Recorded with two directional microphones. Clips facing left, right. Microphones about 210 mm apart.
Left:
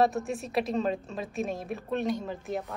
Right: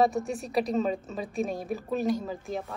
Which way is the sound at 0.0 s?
Centre (ahead or behind).